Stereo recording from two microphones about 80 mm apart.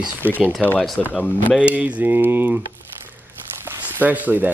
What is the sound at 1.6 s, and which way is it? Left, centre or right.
Speech, centre.